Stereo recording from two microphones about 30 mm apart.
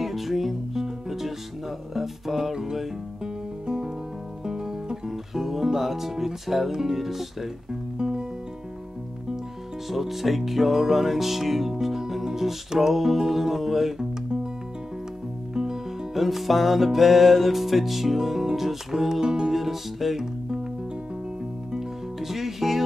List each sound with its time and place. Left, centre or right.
0.0 s music: centre
2.5 s music: centre
8.0 s music: right
9.8 s music: centre
15.5 s music: right
16.2 s music: centre
19.2 s music: right
19.5 s music: centre
21.7 s music: centre